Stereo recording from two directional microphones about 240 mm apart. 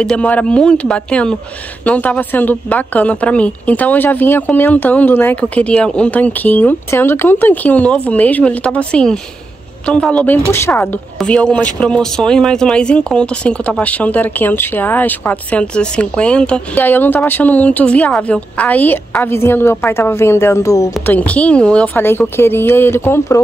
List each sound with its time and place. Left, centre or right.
0.0 s a woman's voice: centre